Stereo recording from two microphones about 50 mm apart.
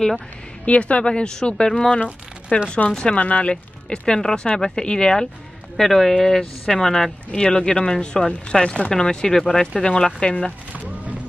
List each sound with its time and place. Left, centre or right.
0.7 s speech: left
2.5 s speech: left